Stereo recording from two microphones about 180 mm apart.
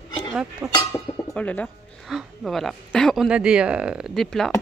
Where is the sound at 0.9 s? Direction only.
10° left (ahead or behind).